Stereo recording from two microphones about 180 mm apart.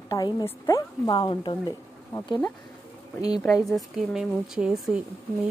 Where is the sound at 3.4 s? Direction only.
Centre (ahead or behind).